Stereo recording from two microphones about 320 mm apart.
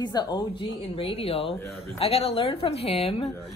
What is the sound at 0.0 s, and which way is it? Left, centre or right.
A woman's voice, centre.